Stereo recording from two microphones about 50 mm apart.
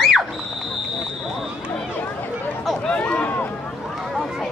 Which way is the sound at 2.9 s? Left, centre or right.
Left.